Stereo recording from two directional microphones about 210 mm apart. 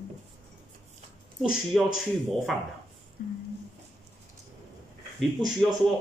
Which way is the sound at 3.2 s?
50° left (ahead or behind).